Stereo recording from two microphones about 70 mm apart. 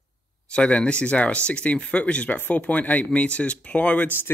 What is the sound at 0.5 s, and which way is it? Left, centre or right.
Speech, centre.